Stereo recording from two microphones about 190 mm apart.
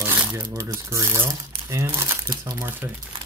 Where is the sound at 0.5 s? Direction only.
15° right (ahead or behind).